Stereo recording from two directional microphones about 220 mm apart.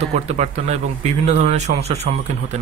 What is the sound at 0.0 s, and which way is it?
Speech, 30° right (ahead or behind).